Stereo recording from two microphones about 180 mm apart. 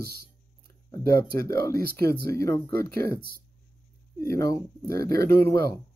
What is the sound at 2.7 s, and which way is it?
Speech, 55° right (ahead or behind).